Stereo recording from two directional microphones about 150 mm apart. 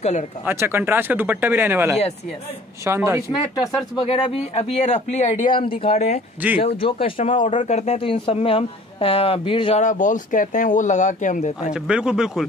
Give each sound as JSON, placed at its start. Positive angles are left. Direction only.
{"t": 0.5, "sound": "speech", "side_deg": -15}
{"t": 3.9, "sound": "speech", "side_deg": 35}
{"t": 5.6, "sound": "speech", "side_deg": 40}
{"t": 9.8, "sound": "speech", "side_deg": 55}
{"t": 11.7, "sound": "speech", "side_deg": -5}